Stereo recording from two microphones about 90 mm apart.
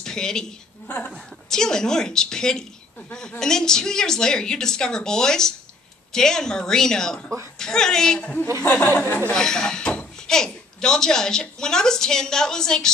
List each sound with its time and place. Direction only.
0.0 s a woman's voice: 5° left (ahead or behind)
0.8 s a woman's voice: 20° left (ahead or behind)
1.1 s a woman's voice: 5° left (ahead or behind)
9.3 s speech: 5° left (ahead or behind)